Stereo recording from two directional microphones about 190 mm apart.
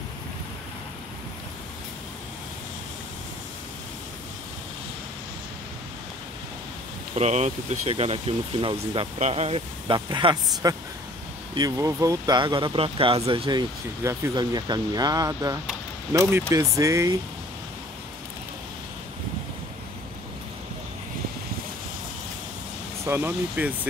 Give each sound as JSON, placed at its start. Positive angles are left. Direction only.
{"t": 7.2, "sound": "speech", "side_deg": -35}
{"t": 23.0, "sound": "speech", "side_deg": -10}